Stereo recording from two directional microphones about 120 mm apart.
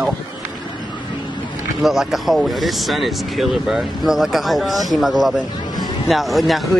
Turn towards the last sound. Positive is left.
turn(degrees=0)  # may be behind; listen again after turning